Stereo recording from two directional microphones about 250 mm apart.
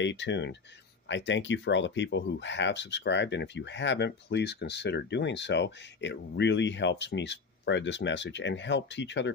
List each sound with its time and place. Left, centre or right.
0.0 s speech: left